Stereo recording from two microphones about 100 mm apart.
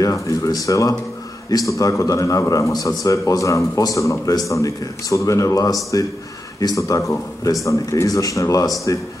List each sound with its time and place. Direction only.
0.0 s a man's voice: 30° left (ahead or behind)